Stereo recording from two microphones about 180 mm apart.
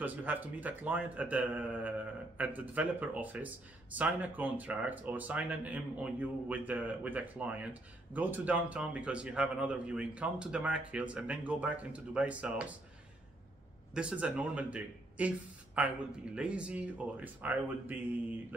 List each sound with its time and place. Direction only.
0.0 s a man's voice: 10° right (ahead or behind)
13.9 s a man's voice: 5° right (ahead or behind)